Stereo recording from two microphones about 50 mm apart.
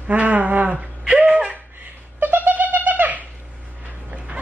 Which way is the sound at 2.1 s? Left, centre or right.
Right.